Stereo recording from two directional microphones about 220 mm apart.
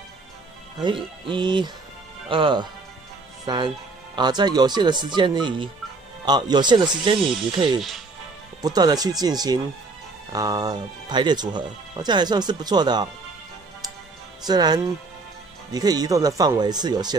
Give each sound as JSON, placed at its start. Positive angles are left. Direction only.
{"t": 0.8, "sound": "speech", "side_deg": -20}
{"t": 14.4, "sound": "speech", "side_deg": -20}